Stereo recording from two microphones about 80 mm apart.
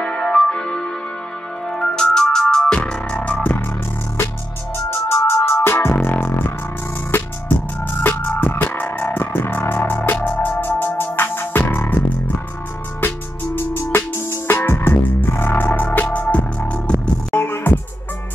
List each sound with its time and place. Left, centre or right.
0.0 s music: centre
4.7 s music: left
13.6 s music: left